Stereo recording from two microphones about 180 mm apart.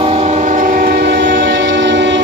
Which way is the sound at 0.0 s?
35° right (ahead or behind).